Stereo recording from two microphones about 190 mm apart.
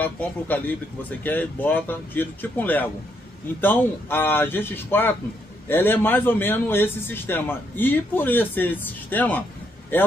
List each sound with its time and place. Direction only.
0.0 s speech: 10° left (ahead or behind)